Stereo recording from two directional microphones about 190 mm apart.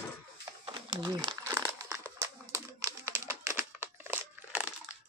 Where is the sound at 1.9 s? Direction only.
10° right (ahead or behind).